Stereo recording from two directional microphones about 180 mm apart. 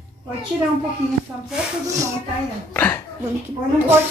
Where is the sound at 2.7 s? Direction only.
10° left (ahead or behind).